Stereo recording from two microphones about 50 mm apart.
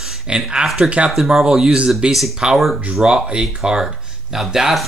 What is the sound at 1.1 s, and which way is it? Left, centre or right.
Speech, centre.